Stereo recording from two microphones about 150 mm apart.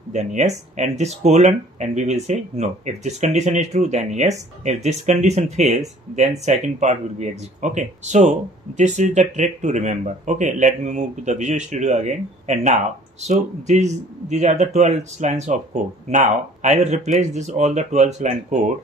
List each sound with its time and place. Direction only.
0.1 s speech: 50° right (ahead or behind)